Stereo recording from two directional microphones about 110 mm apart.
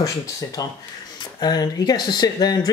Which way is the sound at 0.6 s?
30° left (ahead or behind).